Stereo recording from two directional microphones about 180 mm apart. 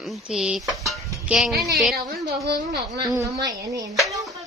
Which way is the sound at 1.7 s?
Centre (ahead or behind).